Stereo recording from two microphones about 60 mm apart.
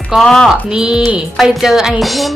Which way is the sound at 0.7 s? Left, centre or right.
Centre.